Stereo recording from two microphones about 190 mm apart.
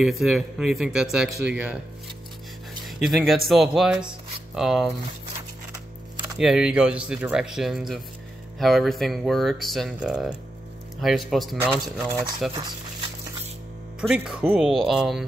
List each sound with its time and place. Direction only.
0.0 s speech: centre (ahead or behind)
3.0 s speech: centre (ahead or behind)
6.3 s speech: 5° right (ahead or behind)
14.0 s speech: 5° right (ahead or behind)